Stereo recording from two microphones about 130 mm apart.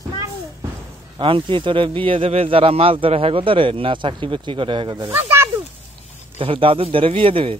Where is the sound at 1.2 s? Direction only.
40° right (ahead or behind).